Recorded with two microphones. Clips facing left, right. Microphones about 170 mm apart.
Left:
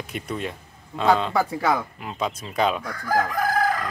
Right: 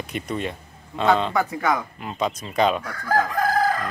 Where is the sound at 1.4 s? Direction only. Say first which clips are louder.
Even; 30° left (ahead or behind).